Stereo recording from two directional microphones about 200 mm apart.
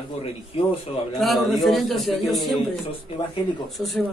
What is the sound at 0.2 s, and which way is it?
Speech, 30° left (ahead or behind).